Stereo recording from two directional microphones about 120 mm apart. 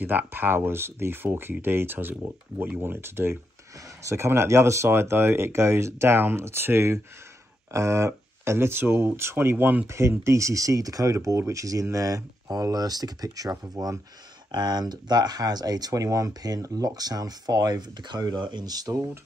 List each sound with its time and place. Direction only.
0.0 s speech: 15° right (ahead or behind)